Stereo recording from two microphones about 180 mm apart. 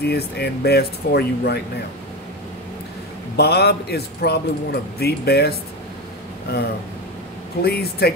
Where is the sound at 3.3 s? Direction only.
65° left (ahead or behind).